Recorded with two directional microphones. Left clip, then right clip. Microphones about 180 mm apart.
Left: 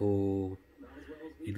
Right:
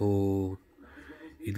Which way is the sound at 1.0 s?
35° right (ahead or behind).